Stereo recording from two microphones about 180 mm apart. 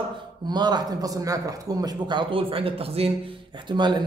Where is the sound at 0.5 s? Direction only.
25° right (ahead or behind).